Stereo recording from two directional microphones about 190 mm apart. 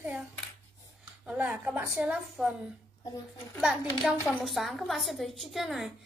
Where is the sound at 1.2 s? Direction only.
5° right (ahead or behind).